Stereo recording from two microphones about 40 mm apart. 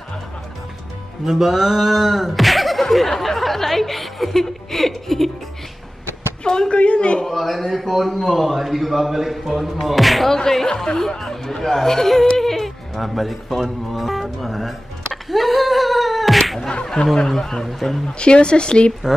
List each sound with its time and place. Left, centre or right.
1.2 s speech: centre
6.7 s speech: left
7.2 s speech: centre
14.4 s music: centre
15.2 s a sound: centre
16.8 s speech: centre
18.0 s speech: left